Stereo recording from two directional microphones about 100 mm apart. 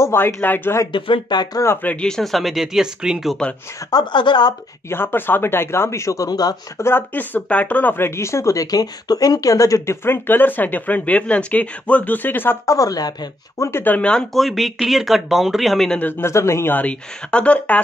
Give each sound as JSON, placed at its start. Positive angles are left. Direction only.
{"t": 0.0, "sound": "speech", "side_deg": 25}
{"t": 0.9, "sound": "a woman's voice", "side_deg": 55}
{"t": 1.6, "sound": "a woman's voice", "side_deg": 20}
{"t": 2.0, "sound": "speech", "side_deg": 5}
{"t": 3.9, "sound": "a woman's voice", "side_deg": 50}
{"t": 4.8, "sound": "speech", "side_deg": 20}
{"t": 6.8, "sound": "speech", "side_deg": 20}
{"t": 12.7, "sound": "a woman's voice", "side_deg": 35}
{"t": 13.7, "sound": "speech", "side_deg": 20}
{"t": 16.0, "sound": "a woman's voice", "side_deg": 20}